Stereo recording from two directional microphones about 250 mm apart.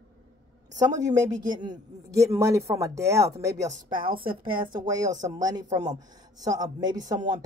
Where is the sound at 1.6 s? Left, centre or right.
Centre.